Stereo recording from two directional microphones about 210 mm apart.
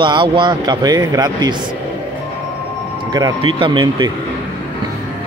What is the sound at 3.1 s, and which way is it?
A man's voice, 20° right (ahead or behind).